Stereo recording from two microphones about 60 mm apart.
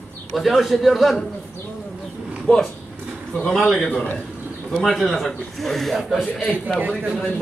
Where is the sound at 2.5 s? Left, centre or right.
Centre.